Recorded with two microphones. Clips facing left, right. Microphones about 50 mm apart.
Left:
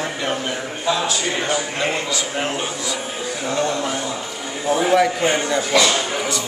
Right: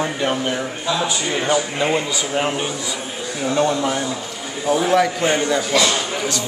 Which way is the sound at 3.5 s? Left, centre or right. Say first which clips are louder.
Right 4 dB; right.